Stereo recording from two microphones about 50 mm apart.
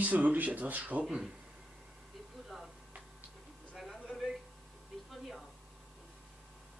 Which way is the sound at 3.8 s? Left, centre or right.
Centre.